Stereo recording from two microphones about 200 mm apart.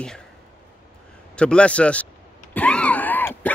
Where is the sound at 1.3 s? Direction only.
5° left (ahead or behind).